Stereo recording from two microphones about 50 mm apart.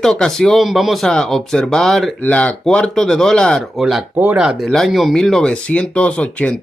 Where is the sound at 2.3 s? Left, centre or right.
Left.